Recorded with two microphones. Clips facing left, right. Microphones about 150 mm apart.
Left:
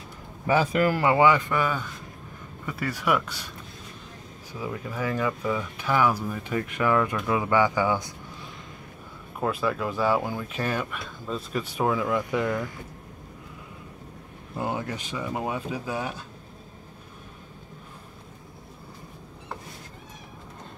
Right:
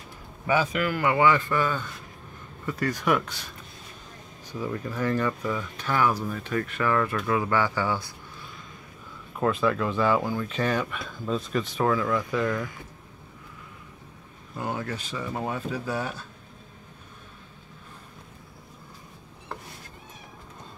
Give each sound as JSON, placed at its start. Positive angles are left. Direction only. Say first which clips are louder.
{"t": 0.5, "sound": "speech", "louder": "left 3 dB", "side_deg": 40}
{"t": 1.3, "sound": "speech", "louder": "even", "side_deg": 15}
{"t": 3.1, "sound": "speech", "louder": "left 1 dB", "side_deg": 0}
{"t": 4.6, "sound": "speech", "louder": "right 2 dB", "side_deg": 10}
{"t": 9.4, "sound": "speech", "louder": "right 2 dB", "side_deg": 5}
{"t": 14.5, "sound": "speech", "louder": "left 1 dB", "side_deg": 15}